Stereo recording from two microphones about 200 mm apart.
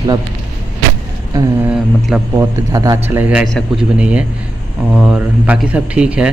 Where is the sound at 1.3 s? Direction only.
5° right (ahead or behind).